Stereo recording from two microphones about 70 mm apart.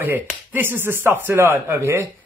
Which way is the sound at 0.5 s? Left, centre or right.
Right.